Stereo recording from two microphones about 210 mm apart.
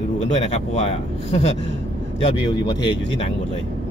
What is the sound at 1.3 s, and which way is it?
Speech, 30° left (ahead or behind).